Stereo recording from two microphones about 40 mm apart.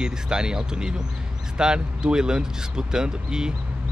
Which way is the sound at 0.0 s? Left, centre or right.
Centre.